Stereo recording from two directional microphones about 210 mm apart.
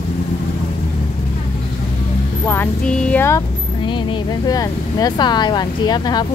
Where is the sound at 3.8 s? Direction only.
25° left (ahead or behind).